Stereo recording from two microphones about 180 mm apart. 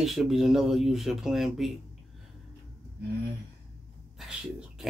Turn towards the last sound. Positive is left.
turn(degrees=0)  # may be behind; listen again after turning